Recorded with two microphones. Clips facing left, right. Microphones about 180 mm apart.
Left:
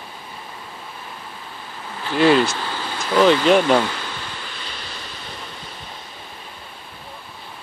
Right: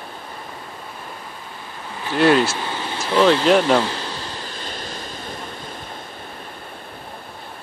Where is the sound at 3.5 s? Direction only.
Centre (ahead or behind).